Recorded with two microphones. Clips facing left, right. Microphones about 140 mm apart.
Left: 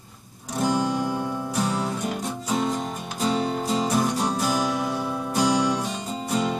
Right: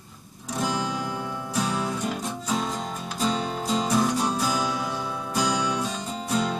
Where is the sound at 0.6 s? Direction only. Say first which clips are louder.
Left 5 dB; 50° left (ahead or behind).